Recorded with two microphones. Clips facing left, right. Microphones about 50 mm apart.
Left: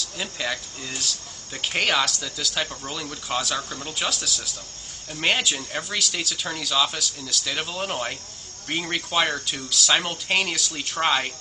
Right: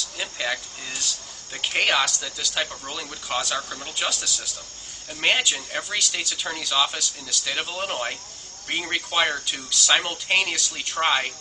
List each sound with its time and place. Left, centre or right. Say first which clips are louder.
0.2 s speech: right 1 dB; centre